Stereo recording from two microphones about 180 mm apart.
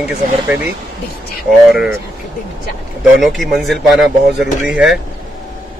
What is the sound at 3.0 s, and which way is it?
Speech, centre (ahead or behind).